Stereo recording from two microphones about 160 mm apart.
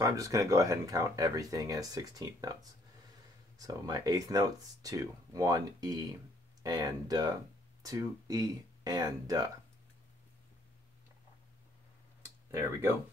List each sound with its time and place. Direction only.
0.0 s speech: 20° right (ahead or behind)
3.5 s speech: 25° right (ahead or behind)